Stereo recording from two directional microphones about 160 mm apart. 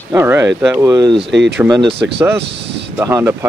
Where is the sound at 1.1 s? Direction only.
90° right.